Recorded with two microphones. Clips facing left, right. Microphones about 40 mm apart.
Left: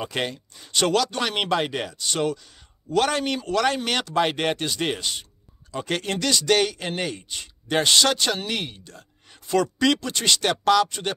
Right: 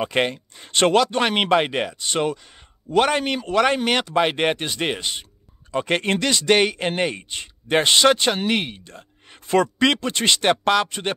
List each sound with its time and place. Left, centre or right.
0.0 s speech: right
5.7 s speech: right